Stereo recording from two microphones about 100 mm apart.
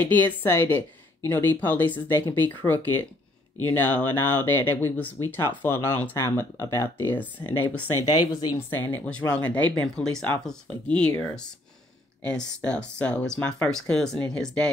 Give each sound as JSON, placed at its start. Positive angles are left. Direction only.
{"t": 0.0, "sound": "speech", "side_deg": 20}
{"t": 8.0, "sound": "speech", "side_deg": 40}
{"t": 8.5, "sound": "speech", "side_deg": 20}
{"t": 12.2, "sound": "speech", "side_deg": 10}